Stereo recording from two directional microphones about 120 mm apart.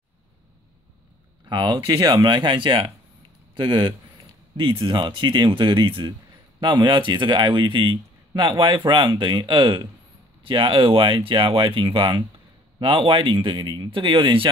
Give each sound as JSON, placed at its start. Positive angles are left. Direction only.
{"t": 1.5, "sound": "speech", "side_deg": -40}